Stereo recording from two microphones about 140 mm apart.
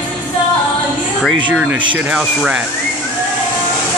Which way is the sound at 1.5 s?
10° right (ahead or behind).